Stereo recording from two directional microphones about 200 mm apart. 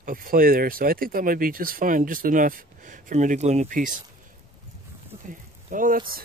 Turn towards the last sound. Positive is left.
turn(degrees=-45)  # may be behind; listen again after turning